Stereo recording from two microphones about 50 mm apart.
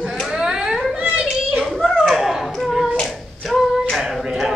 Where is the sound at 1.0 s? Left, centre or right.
Right.